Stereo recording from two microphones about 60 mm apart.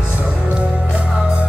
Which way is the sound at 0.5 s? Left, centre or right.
Right.